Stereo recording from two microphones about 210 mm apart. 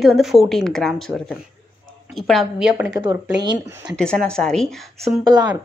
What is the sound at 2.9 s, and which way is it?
Speech, 20° right (ahead or behind).